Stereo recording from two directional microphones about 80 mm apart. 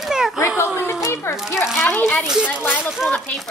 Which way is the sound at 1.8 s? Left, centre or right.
Left.